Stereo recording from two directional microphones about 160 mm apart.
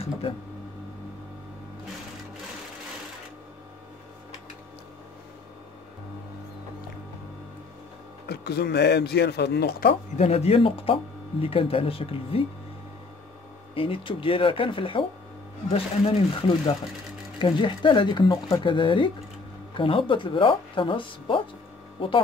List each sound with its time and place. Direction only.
0.2 s speech: 35° left (ahead or behind)
8.3 s speech: 90° left; by 9.9 s 75° left (ahead or behind)
10.1 s speech: 40° left (ahead or behind)
13.7 s speech: 35° left (ahead or behind)